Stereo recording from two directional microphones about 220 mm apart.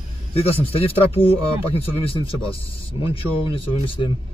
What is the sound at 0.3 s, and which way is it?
Speech, 25° left (ahead or behind).